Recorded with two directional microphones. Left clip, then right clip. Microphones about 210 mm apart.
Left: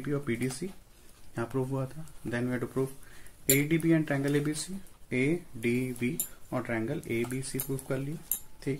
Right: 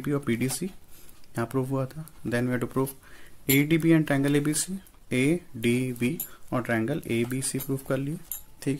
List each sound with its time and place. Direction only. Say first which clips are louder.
0.0 s speech: right 4 dB; 55° right (ahead or behind)